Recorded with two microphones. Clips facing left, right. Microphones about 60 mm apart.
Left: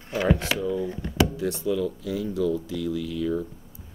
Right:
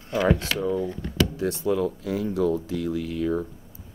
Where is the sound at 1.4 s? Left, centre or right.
Right.